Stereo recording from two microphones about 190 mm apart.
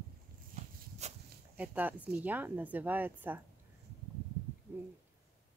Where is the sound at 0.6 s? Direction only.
35° right (ahead or behind).